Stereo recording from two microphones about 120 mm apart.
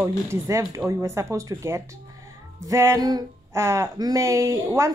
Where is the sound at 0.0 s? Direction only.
25° right (ahead or behind).